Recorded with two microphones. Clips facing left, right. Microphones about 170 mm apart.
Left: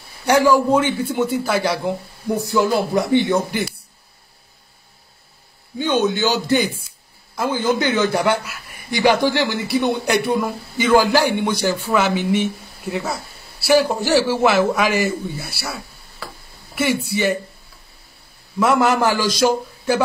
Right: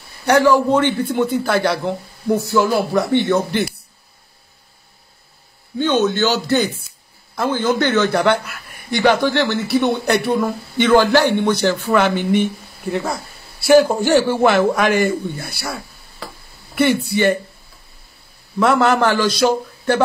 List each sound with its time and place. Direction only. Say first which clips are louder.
0.2 s a man's voice: right 1 dB; 10° left (ahead or behind)
5.8 s a man's voice: right 2 dB; 10° left (ahead or behind)
18.6 s a man's voice: right 2 dB; 5° left (ahead or behind)